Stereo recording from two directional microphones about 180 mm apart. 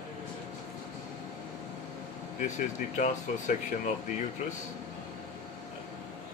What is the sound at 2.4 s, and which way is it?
Speech, 45° left (ahead or behind).